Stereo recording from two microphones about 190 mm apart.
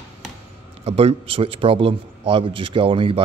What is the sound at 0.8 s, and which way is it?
A man's voice, 30° right (ahead or behind).